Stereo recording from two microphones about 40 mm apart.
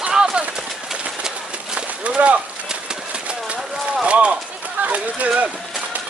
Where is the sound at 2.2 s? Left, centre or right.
Right.